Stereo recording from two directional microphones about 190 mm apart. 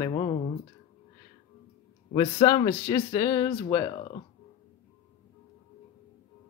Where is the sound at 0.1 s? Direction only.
25° left (ahead or behind).